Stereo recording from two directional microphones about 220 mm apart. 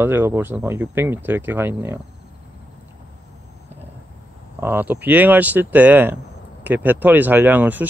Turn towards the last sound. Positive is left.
turn(degrees=-10)  # may be behind; listen again after turning